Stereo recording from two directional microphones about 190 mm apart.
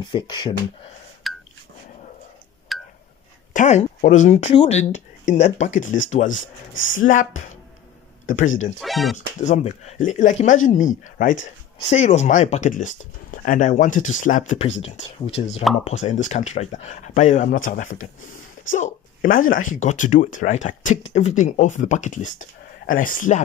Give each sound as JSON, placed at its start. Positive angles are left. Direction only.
{"t": 0.0, "sound": "speech", "side_deg": 25}
{"t": 1.3, "sound": "a sound", "side_deg": 0}
{"t": 2.7, "sound": "a sound", "side_deg": 0}
{"t": 3.5, "sound": "speech", "side_deg": 40}
{"t": 8.5, "sound": "speech", "side_deg": 90}
{"t": 8.7, "sound": "speech", "side_deg": 0}
{"t": 9.4, "sound": "speech", "side_deg": 35}